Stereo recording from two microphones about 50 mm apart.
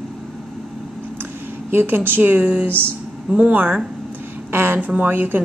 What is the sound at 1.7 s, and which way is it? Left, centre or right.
A woman's voice, right.